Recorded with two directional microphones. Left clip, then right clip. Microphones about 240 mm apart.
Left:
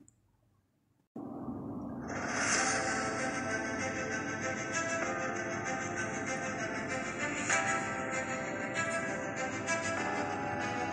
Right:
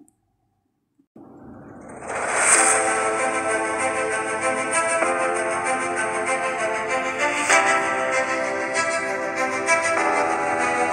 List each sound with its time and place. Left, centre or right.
2.1 s a sound: right
2.4 s music: right
4.4 s music: right